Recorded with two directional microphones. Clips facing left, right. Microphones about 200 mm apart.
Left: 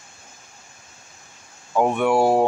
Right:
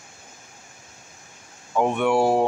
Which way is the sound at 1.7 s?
10° left (ahead or behind).